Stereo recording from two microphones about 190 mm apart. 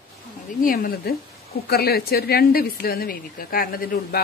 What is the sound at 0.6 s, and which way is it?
A woman's voice, 45° left (ahead or behind).